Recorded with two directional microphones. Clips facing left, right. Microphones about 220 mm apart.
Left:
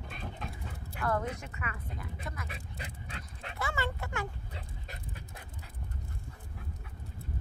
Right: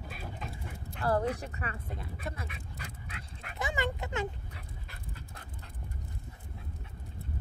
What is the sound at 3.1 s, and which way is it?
Dog, 30° left (ahead or behind).